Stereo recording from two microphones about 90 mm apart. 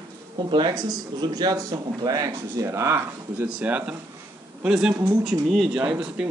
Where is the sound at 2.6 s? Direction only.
30° right (ahead or behind).